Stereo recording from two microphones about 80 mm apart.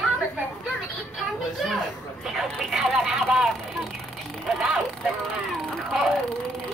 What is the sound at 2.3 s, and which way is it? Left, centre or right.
Speech, centre.